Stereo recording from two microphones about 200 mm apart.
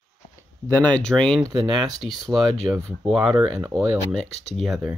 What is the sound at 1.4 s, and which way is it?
Speech, 20° right (ahead or behind).